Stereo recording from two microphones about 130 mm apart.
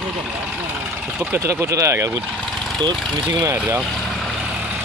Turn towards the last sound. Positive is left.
turn(degrees=-25)  # may be behind; listen again after turning